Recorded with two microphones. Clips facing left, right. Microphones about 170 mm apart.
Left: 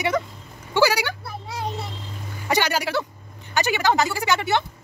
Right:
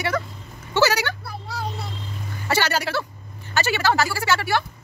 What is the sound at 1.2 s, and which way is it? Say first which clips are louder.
Children playing: left 1 dB; centre (ahead or behind).